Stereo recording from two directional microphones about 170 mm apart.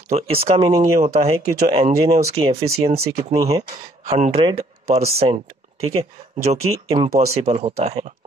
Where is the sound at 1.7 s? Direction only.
35° right (ahead or behind).